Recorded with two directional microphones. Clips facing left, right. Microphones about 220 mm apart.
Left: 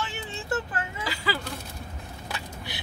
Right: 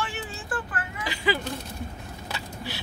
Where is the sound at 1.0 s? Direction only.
15° right (ahead or behind).